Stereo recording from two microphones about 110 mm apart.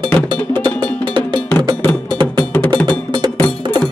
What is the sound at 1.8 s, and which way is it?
Music, 15° left (ahead or behind).